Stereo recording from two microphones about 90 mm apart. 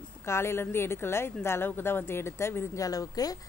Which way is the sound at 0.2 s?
30° left (ahead or behind).